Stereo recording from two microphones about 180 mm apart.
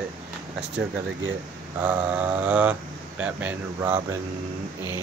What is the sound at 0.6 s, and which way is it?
Speech, 75° right (ahead or behind).